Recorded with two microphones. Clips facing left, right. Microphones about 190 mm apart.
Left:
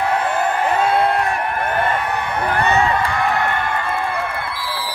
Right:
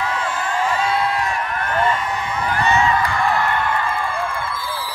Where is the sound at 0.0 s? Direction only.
60° left (ahead or behind).